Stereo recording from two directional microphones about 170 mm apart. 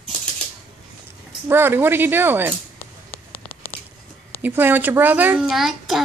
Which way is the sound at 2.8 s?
35° left (ahead or behind).